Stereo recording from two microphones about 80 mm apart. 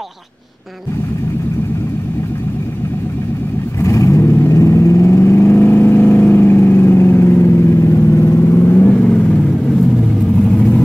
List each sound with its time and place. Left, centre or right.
3.8 s vehicle: left; by 9.4 s centre